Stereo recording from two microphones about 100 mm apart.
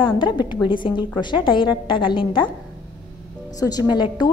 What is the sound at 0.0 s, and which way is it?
A woman's voice, 50° left (ahead or behind).